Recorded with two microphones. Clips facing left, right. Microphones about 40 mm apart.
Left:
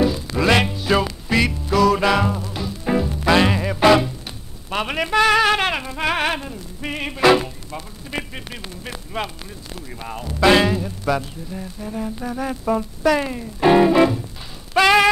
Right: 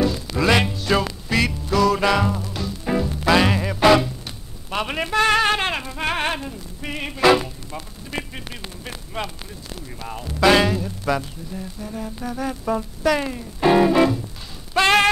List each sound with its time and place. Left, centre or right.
0.0 s music: centre
4.6 s a sound: centre
5.2 s music: centre